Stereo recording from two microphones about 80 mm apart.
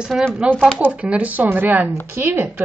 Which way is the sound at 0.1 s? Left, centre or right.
Centre.